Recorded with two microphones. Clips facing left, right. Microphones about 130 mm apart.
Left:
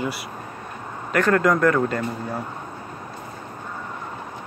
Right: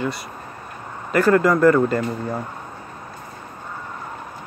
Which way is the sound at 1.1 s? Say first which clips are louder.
Right 3 dB; 5° right (ahead or behind).